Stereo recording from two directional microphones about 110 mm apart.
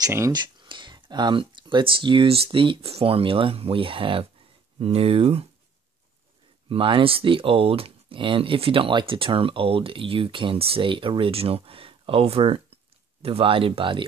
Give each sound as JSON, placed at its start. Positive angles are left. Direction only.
{"t": 0.3, "sound": "speech", "side_deg": -45}
{"t": 6.7, "sound": "speech", "side_deg": -55}